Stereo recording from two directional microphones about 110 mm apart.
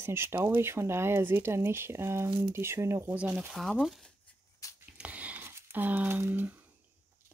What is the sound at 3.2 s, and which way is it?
Speech, 5° right (ahead or behind).